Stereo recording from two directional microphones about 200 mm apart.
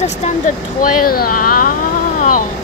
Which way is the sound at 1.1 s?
45° left (ahead or behind).